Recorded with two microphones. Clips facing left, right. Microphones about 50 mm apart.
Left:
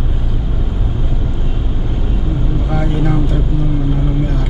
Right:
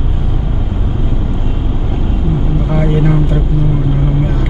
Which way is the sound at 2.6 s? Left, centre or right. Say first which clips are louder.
Right 4 dB; centre.